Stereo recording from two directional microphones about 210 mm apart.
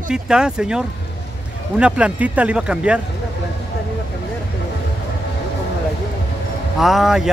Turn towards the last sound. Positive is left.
turn(degrees=0)  # may be behind; listen again after turning